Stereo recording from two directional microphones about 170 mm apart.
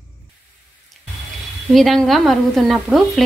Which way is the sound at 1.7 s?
Centre (ahead or behind).